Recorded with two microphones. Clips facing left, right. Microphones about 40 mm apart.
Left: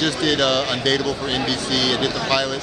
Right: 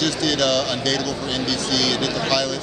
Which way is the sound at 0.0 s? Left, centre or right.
Left.